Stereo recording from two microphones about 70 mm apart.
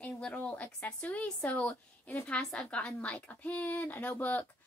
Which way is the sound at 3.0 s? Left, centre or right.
Left.